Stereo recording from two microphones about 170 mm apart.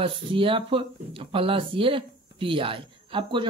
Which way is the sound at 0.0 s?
30° right (ahead or behind).